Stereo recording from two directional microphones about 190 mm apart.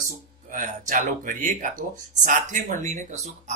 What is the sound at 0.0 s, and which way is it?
Speech, 45° right (ahead or behind).